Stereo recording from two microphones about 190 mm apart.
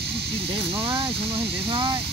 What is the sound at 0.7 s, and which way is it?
Speech, 25° right (ahead or behind).